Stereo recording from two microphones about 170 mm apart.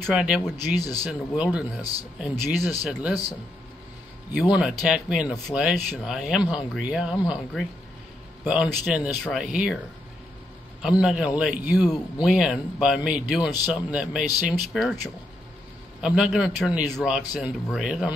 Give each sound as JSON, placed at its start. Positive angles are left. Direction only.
{"t": 0.0, "sound": "speech", "side_deg": -5}
{"t": 0.7, "sound": "speech", "side_deg": 20}
{"t": 1.0, "sound": "speech", "side_deg": -10}
{"t": 1.8, "sound": "speech", "side_deg": 20}
{"t": 2.1, "sound": "speech", "side_deg": -10}
{"t": 4.3, "sound": "speech", "side_deg": -5}
{"t": 8.8, "sound": "speech", "side_deg": -5}
{"t": 10.8, "sound": "speech", "side_deg": -5}
{"t": 16.0, "sound": "speech", "side_deg": -5}